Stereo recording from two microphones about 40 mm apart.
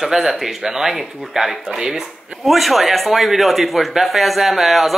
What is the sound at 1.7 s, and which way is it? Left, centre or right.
Speech, centre.